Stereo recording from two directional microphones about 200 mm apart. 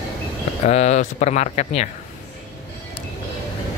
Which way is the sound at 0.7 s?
35° left (ahead or behind).